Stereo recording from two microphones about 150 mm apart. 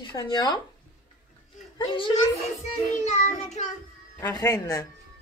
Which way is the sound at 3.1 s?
50° left (ahead or behind).